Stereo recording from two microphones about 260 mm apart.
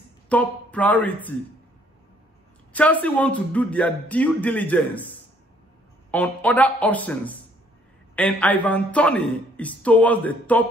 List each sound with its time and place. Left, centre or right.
0.3 s a man's voice: centre
2.7 s a man's voice: centre
6.1 s a man's voice: centre